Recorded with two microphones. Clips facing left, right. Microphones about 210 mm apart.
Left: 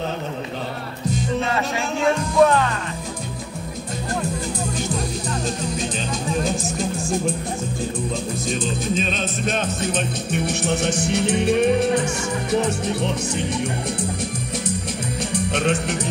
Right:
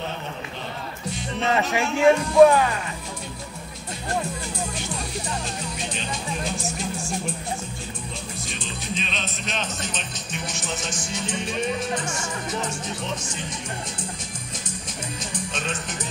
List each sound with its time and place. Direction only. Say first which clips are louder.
1.5 s speech: right 1 dB; 15° right (ahead or behind)
8.5 s speech: left 10 dB; 45° left (ahead or behind); by 13.6 s 60° left (ahead or behind)
15.3 s music: left 10 dB; 65° left (ahead or behind)